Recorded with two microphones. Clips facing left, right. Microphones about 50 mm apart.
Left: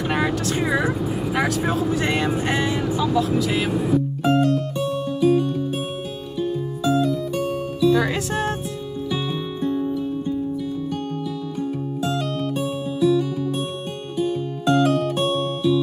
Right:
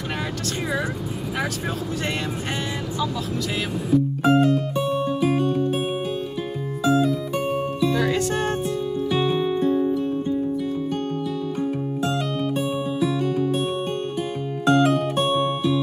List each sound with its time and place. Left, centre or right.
0.1 s speech: centre
4.2 s music: centre
6.8 s music: centre
7.4 s music: right
7.9 s music: centre
9.1 s music: centre
12.5 s music: centre
14.6 s music: centre